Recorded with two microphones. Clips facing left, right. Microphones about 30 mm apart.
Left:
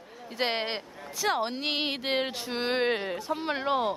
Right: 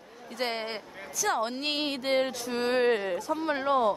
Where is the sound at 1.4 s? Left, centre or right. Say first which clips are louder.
Even; centre.